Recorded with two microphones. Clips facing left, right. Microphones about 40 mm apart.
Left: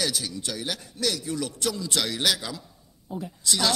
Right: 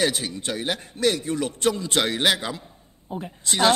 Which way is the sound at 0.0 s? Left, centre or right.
Right.